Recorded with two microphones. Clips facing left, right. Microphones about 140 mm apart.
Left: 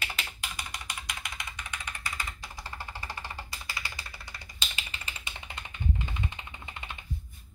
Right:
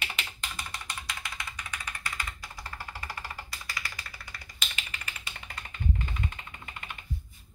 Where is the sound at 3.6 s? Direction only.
25° left (ahead or behind).